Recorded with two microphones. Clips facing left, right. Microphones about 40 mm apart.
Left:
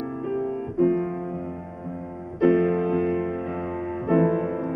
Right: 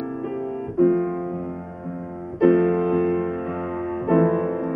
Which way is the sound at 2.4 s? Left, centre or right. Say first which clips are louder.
Right 3 dB; centre.